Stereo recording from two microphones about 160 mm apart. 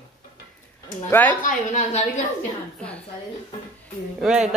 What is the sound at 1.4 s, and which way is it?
Speech, 45° left (ahead or behind).